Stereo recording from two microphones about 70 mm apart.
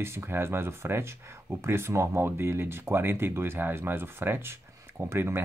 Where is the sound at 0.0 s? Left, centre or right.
Right.